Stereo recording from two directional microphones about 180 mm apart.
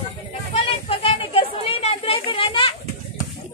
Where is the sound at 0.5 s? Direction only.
30° left (ahead or behind).